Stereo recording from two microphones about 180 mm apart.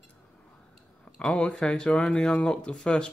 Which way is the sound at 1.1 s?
5° left (ahead or behind).